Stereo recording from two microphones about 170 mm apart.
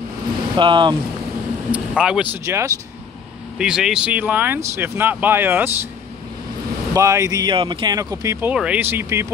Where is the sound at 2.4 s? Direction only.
15° right (ahead or behind).